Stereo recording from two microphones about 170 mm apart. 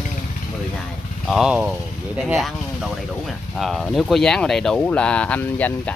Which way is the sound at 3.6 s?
Centre (ahead or behind).